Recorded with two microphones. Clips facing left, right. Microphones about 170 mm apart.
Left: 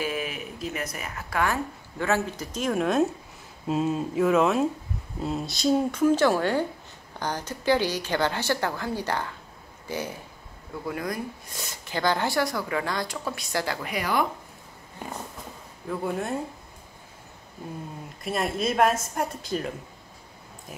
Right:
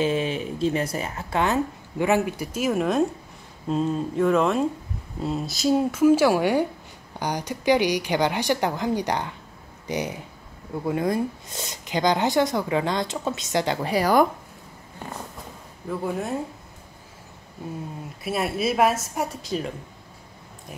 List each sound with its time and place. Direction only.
0.0 s a woman's voice: 25° right (ahead or behind)
13.7 s speech: 35° right (ahead or behind)
15.9 s a woman's voice: centre (ahead or behind)
18.2 s a woman's voice: 5° right (ahead or behind)